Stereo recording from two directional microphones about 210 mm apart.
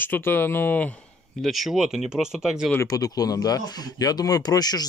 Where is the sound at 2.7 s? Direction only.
15° left (ahead or behind).